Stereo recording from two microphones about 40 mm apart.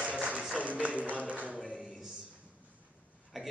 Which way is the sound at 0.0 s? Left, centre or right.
Right.